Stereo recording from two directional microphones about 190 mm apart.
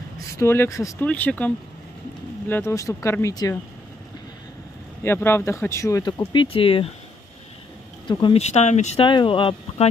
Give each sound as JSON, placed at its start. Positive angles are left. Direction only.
{"t": 0.4, "sound": "speech", "side_deg": 15}
{"t": 5.0, "sound": "speech", "side_deg": 10}
{"t": 8.1, "sound": "speech", "side_deg": 25}
{"t": 9.0, "sound": "speech", "side_deg": 25}